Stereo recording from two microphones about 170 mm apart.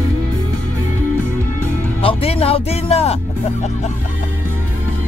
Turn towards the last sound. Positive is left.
turn(degrees=35)  # may be behind; listen again after turning